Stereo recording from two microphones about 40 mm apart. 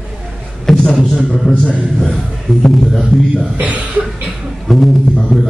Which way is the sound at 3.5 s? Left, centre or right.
Right.